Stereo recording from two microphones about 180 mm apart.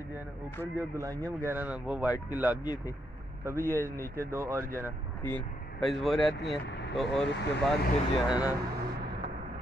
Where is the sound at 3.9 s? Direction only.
55° right (ahead or behind).